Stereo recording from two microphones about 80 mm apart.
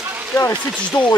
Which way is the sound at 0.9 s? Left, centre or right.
Left.